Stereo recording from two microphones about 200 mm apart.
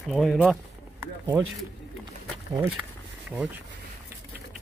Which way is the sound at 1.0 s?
15° right (ahead or behind).